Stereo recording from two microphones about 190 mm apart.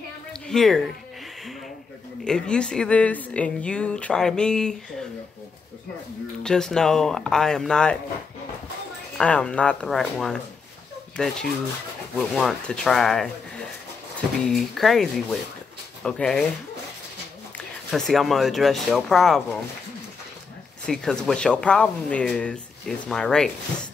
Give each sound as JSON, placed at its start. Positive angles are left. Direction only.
{"t": 0.3, "sound": "a sound", "side_deg": 5}
{"t": 2.2, "sound": "speech", "side_deg": 5}
{"t": 6.4, "sound": "speech", "side_deg": 5}
{"t": 9.2, "sound": "speech", "side_deg": 5}
{"t": 14.4, "sound": "speech", "side_deg": 0}
{"t": 17.6, "sound": "speech", "side_deg": 0}
{"t": 20.8, "sound": "speech", "side_deg": 5}